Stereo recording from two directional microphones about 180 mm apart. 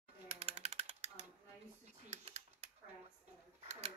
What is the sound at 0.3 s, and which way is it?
Typing, 35° right (ahead or behind).